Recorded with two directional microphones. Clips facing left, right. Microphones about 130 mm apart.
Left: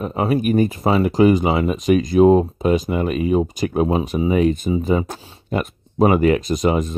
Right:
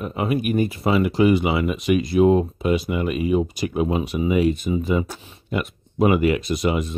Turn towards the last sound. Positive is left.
turn(degrees=40)  # may be behind; listen again after turning